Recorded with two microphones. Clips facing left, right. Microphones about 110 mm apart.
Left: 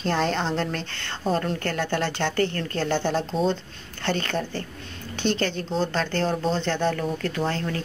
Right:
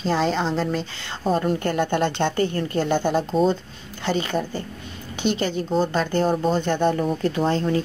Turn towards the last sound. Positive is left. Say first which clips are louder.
# right 6 dB
turn(degrees=-20)  # may be behind; listen again after turning